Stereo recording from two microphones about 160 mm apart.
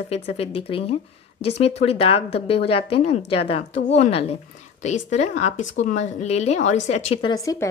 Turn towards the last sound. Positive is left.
turn(degrees=20)  # may be behind; listen again after turning